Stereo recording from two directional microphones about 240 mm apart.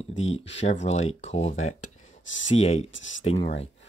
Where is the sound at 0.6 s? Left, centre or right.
Left.